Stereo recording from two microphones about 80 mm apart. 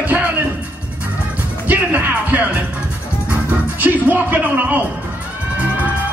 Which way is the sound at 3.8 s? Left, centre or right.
Right.